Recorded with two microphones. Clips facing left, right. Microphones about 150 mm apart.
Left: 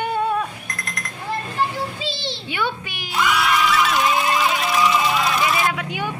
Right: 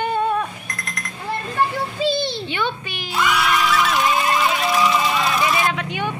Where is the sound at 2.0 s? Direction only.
50° right (ahead or behind).